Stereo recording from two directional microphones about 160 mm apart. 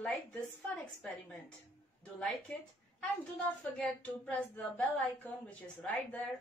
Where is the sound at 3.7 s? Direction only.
10° left (ahead or behind).